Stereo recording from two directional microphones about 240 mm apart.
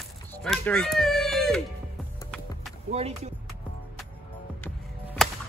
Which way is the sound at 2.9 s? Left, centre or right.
Right.